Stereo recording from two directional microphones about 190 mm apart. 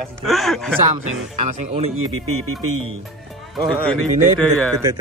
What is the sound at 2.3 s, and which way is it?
Speech, 90° right.